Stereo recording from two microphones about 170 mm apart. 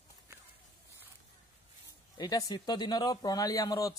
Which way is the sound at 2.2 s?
20° left (ahead or behind).